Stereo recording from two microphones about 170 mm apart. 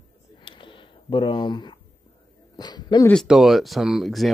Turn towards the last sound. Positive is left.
turn(degrees=0)  # may be behind; listen again after turning